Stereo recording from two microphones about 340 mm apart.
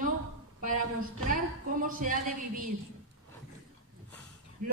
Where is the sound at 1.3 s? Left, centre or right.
Right.